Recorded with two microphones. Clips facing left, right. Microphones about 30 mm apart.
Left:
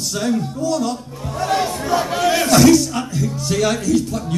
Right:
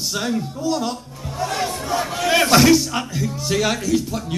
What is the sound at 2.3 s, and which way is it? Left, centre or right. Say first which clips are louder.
A man's voice: left 1 dB; right.